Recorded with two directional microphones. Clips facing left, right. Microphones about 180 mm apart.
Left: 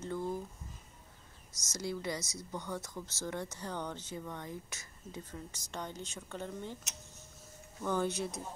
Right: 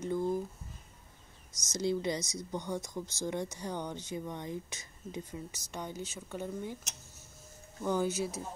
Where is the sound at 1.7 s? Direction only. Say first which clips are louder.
Right 6 dB; 20° right (ahead or behind).